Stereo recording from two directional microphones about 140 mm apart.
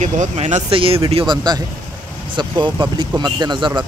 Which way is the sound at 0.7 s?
40° right (ahead or behind).